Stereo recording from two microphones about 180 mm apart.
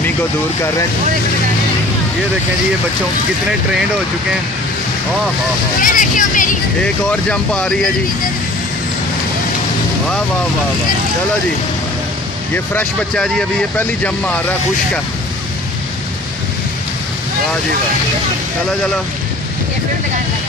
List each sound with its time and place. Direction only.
5.8 s speech: 45° left (ahead or behind)
6.8 s speech: 5° left (ahead or behind)
12.5 s speech: 5° left (ahead or behind)